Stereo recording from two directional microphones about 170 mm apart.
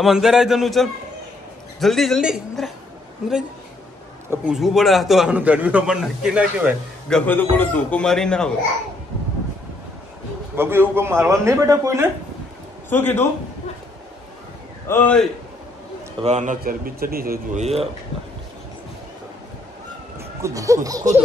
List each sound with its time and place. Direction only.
0.0 s a man's voice: centre (ahead or behind)
4.3 s a man's voice: 5° right (ahead or behind)
7.1 s a man's voice: 5° left (ahead or behind)
10.5 s speech: 15° right (ahead or behind)
12.9 s a man's voice: 10° left (ahead or behind)
14.9 s a man's voice: 10° left (ahead or behind)
16.2 s a man's voice: 40° right (ahead or behind)
16.6 s a man's voice: 60° right (ahead or behind)
17.6 s a man's voice: 35° right (ahead or behind)
20.2 s speech: 20° right (ahead or behind)